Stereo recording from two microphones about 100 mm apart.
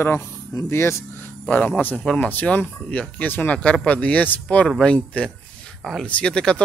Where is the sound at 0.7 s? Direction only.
25° left (ahead or behind).